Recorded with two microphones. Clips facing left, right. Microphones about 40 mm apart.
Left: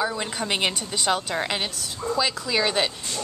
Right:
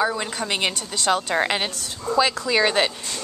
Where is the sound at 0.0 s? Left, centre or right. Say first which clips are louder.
Right 3 dB; centre.